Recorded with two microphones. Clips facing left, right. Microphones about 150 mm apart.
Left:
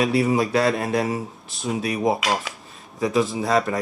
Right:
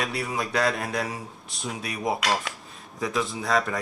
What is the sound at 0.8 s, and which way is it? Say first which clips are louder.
Speech: left 7 dB; 25° left (ahead or behind).